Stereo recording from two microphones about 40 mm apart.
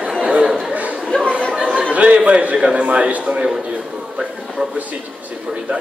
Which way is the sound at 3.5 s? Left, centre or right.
Right.